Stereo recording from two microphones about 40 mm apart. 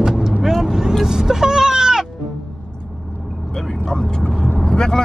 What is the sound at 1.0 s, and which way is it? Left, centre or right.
Music, centre.